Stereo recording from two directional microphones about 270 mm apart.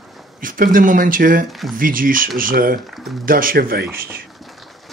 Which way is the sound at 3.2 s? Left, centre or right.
Right.